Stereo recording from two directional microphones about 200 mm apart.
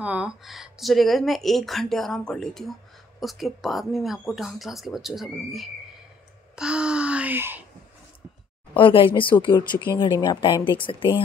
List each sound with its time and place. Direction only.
0.0 s speech: 5° right (ahead or behind)
8.7 s a woman's voice: 25° left (ahead or behind)